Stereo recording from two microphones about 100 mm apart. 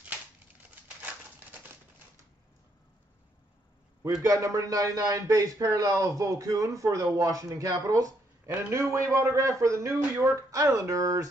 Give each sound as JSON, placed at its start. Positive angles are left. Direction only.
{"t": 4.2, "sound": "a man's voice", "side_deg": -35}
{"t": 8.5, "sound": "a man's voice", "side_deg": -25}